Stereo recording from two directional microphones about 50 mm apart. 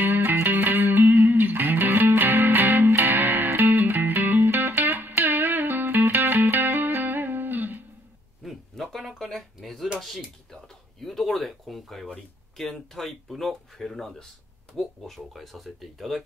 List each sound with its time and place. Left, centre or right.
0.0 s music: right
8.4 s a sound: centre
12.5 s speech: centre